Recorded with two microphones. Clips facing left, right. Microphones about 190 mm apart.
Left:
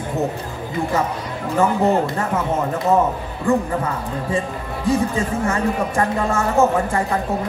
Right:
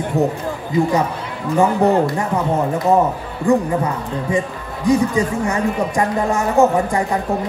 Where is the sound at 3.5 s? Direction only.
15° right (ahead or behind).